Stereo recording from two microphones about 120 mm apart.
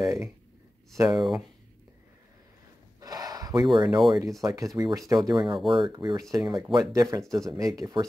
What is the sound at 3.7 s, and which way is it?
Speech, 40° right (ahead or behind).